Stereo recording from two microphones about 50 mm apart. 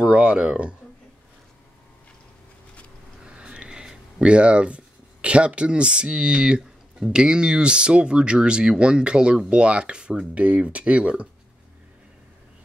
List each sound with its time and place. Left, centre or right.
0.0 s speech: right
3.3 s speech: centre